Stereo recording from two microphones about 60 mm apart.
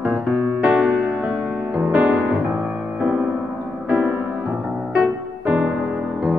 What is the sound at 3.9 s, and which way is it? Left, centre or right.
Music, right.